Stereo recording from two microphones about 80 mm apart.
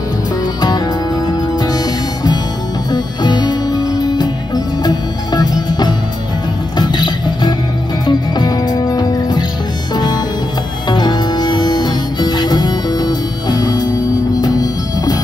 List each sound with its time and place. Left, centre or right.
0.6 s music: left
2.9 s music: left